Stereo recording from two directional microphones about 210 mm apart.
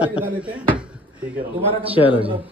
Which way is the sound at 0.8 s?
5° right (ahead or behind).